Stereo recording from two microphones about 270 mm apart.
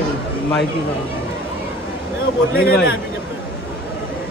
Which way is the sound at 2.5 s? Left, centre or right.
Left.